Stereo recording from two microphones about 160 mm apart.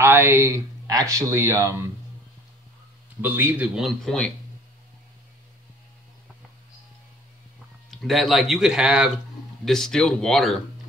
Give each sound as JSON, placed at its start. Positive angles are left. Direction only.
{"t": 0.0, "sound": "speech", "side_deg": -15}
{"t": 3.2, "sound": "speech", "side_deg": -10}
{"t": 7.9, "sound": "speech", "side_deg": 0}